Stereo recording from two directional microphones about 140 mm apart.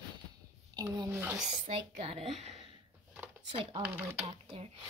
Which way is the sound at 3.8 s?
15° right (ahead or behind).